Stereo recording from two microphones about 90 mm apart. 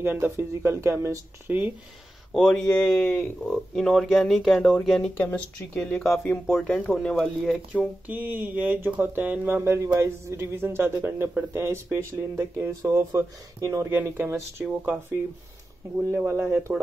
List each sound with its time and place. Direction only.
0.0 s speech: 25° right (ahead or behind)
1.5 s speech: 15° right (ahead or behind)
2.3 s speech: 5° left (ahead or behind)
8.1 s speech: 20° right (ahead or behind)
16.3 s speech: 30° right (ahead or behind)